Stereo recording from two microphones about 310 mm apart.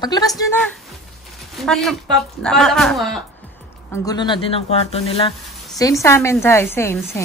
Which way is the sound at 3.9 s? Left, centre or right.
Centre.